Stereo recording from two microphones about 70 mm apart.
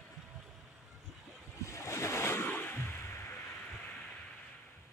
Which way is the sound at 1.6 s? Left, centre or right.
Left.